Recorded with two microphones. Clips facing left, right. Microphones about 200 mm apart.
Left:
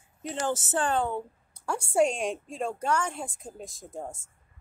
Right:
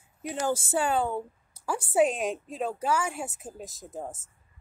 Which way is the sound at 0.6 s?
10° right (ahead or behind).